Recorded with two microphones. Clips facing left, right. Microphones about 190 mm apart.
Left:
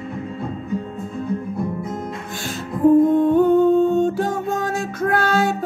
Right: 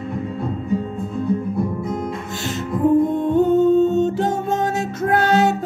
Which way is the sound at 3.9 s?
25° right (ahead or behind).